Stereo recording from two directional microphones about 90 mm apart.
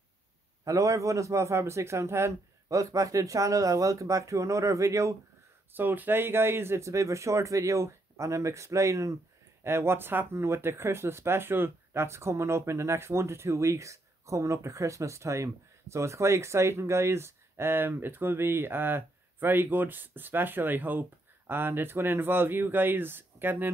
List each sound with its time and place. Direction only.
0.7 s a man's voice: 40° right (ahead or behind)
5.7 s a man's voice: 20° right (ahead or behind)